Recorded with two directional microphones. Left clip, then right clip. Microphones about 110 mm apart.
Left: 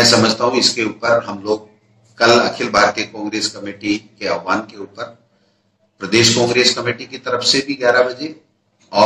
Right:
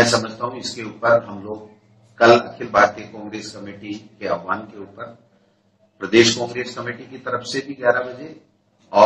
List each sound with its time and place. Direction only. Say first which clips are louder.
0.0 s a man's voice: left 6 dB; 25° left (ahead or behind)